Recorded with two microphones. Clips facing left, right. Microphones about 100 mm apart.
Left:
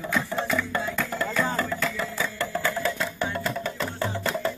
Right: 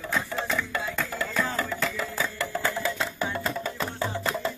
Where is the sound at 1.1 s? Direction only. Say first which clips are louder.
Left 3 dB; centre (ahead or behind).